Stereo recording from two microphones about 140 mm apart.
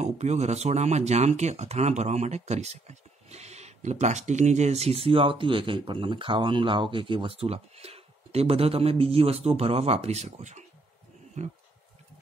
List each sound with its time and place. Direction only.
0.0 s speech: 55° right (ahead or behind)